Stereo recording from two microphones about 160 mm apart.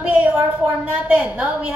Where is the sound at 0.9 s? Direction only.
10° right (ahead or behind).